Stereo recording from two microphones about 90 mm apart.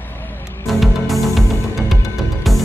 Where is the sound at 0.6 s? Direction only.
Centre (ahead or behind).